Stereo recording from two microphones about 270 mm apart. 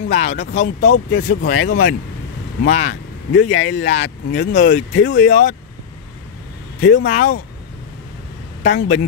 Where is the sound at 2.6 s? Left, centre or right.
Left.